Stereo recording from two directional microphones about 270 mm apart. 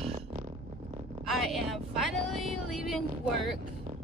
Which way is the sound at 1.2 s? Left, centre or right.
Centre.